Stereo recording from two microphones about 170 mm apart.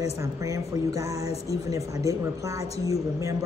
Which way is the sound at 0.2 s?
20° right (ahead or behind).